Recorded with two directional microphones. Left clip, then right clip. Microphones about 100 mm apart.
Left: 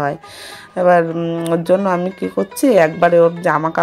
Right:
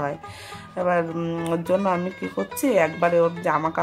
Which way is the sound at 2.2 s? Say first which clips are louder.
Left 8 dB; centre (ahead or behind).